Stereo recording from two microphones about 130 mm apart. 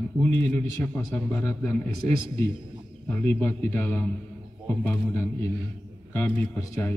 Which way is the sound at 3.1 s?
15° left (ahead or behind).